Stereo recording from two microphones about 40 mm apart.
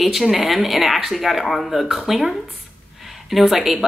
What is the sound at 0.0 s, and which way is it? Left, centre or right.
A woman's voice, centre.